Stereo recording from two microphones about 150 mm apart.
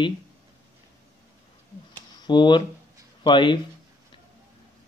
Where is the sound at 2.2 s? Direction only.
30° left (ahead or behind).